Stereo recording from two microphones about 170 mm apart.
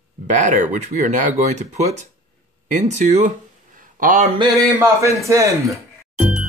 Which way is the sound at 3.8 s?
50° right (ahead or behind).